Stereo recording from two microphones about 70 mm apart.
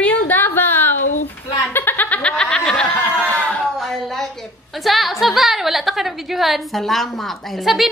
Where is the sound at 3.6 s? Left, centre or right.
Centre.